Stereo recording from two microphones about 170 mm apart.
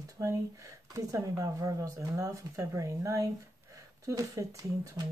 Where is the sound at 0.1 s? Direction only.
20° right (ahead or behind).